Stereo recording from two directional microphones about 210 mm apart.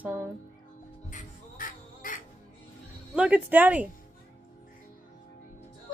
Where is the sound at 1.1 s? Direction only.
40° left (ahead or behind).